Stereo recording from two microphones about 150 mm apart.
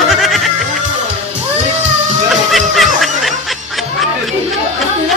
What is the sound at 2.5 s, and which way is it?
Music, centre (ahead or behind).